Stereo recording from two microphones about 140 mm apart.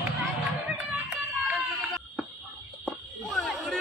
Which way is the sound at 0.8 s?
10° right (ahead or behind).